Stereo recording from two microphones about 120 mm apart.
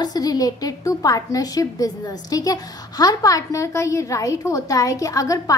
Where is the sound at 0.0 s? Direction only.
35° left (ahead or behind).